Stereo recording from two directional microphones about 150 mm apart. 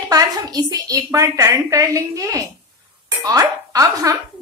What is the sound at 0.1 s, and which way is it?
A woman's voice, 25° right (ahead or behind).